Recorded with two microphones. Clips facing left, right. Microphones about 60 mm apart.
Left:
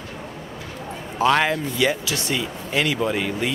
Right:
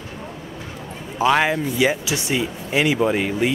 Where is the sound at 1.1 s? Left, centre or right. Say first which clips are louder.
Right 1 dB; centre.